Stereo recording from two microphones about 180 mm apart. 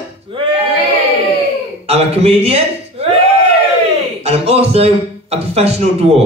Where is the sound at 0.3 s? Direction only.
30° right (ahead or behind).